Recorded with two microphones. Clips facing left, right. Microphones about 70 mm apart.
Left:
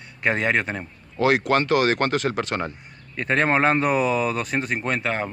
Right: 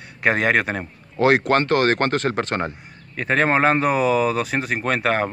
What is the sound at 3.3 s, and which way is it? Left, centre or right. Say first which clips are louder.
Speech: right 2 dB; centre.